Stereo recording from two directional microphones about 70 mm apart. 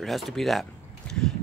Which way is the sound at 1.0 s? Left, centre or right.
Centre.